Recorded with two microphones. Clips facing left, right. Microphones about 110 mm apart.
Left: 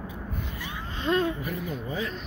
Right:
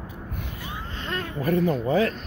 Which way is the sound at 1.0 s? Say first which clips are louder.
Left 8 dB; 20° left (ahead or behind).